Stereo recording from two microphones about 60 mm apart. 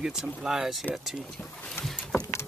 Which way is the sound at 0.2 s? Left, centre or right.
Centre.